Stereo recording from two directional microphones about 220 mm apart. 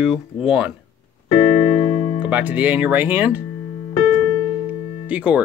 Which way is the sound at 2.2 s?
5° right (ahead or behind).